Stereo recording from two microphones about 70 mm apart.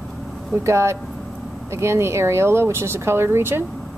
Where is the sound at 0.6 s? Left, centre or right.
Right.